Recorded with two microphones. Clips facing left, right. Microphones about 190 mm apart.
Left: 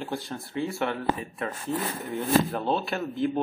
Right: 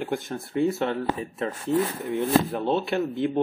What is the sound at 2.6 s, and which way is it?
Speech, 20° right (ahead or behind).